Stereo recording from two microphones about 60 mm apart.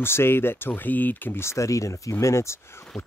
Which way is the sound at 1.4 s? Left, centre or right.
Left.